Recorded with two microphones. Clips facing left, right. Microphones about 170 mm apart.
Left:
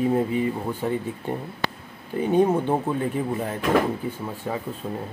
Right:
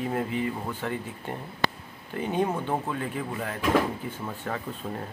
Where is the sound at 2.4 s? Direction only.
20° left (ahead or behind).